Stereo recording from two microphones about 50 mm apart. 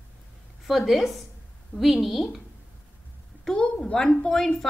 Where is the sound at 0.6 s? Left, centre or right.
Centre.